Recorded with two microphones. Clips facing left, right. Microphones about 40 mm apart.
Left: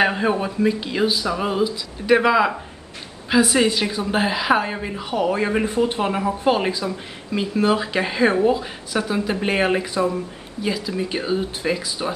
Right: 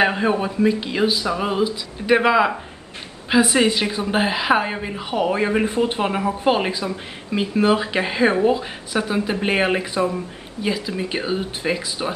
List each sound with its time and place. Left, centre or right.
0.0 s speech: centre